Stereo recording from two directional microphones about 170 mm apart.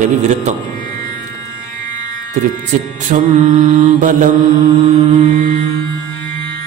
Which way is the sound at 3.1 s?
45° right (ahead or behind).